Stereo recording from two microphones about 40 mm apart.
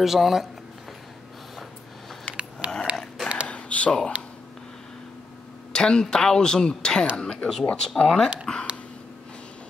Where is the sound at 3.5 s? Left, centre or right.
Left.